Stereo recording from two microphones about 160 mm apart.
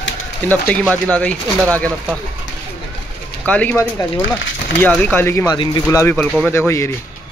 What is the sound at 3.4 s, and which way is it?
A man's voice, 10° left (ahead or behind).